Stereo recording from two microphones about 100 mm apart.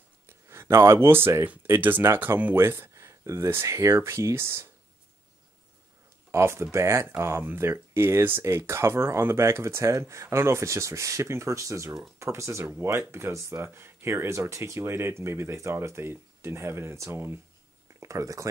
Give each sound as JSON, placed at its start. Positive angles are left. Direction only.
{"t": 0.3, "sound": "speech", "side_deg": -25}
{"t": 6.3, "sound": "speech", "side_deg": -25}